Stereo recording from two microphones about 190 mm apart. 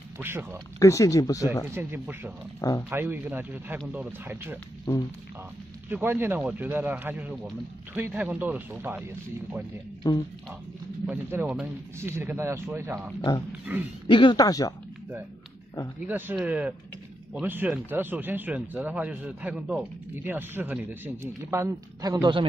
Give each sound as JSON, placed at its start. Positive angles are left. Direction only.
{"t": 0.2, "sound": "speech", "side_deg": -10}
{"t": 0.7, "sound": "speech", "side_deg": 15}
{"t": 1.8, "sound": "speech", "side_deg": -10}
{"t": 4.9, "sound": "a man's voice", "side_deg": 20}
{"t": 5.9, "sound": "speech", "side_deg": -10}
{"t": 10.0, "sound": "a man's voice", "side_deg": 20}
{"t": 11.1, "sound": "speech", "side_deg": -10}
{"t": 14.0, "sound": "a man's voice", "side_deg": 25}
{"t": 16.0, "sound": "speech", "side_deg": -10}